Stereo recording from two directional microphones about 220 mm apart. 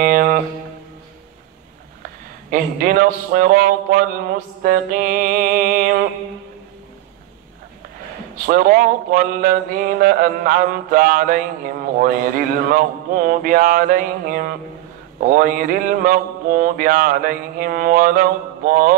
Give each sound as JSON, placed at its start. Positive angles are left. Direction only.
{"t": 0.0, "sound": "a sound", "side_deg": -40}
{"t": 2.5, "sound": "mantra", "side_deg": -40}
{"t": 8.5, "sound": "mantra", "side_deg": -40}